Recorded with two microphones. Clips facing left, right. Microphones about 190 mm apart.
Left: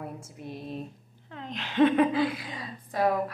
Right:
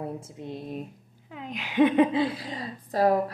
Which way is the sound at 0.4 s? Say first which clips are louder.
Left 1 dB; 20° right (ahead or behind).